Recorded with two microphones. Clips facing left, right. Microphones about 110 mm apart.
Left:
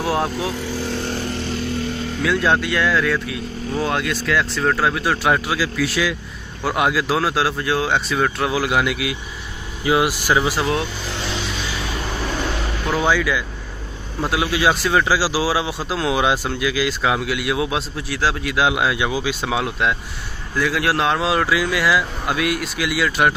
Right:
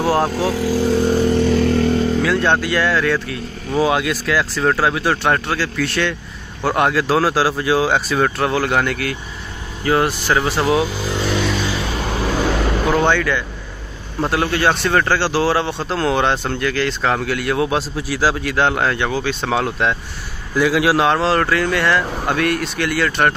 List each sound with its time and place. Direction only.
0.0 s speech: centre (ahead or behind)
1.3 s a sound: 55° right (ahead or behind)
2.2 s speech: centre (ahead or behind)
11.1 s vehicle: 50° right (ahead or behind)
12.9 s speech: 5° left (ahead or behind)